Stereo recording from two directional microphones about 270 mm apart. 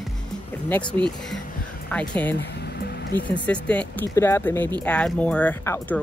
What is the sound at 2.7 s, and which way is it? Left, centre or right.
Music, left.